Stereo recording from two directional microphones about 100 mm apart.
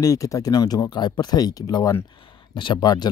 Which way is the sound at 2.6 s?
50° left (ahead or behind).